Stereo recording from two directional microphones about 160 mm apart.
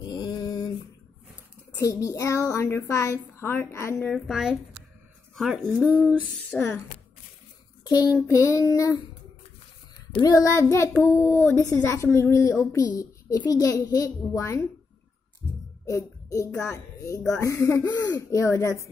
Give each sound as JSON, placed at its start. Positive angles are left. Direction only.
{"t": 0.0, "sound": "a sound", "side_deg": 25}
{"t": 1.8, "sound": "a child's voice", "side_deg": 20}
{"t": 4.1, "sound": "a woman's voice", "side_deg": 0}
{"t": 6.5, "sound": "a child's voice", "side_deg": 10}
{"t": 7.8, "sound": "child singing", "side_deg": 25}
{"t": 8.3, "sound": "a child's voice", "side_deg": 20}
{"t": 10.1, "sound": "a child's voice", "side_deg": 25}
{"t": 15.8, "sound": "a child's voice", "side_deg": 20}